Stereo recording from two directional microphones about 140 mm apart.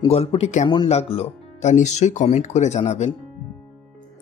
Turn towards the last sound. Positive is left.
turn(degrees=50)  # may be behind; listen again after turning